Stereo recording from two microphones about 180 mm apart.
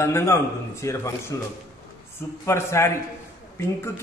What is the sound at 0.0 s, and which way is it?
A man's voice, 15° left (ahead or behind).